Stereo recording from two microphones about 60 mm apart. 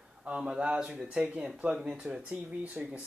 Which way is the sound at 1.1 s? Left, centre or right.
Right.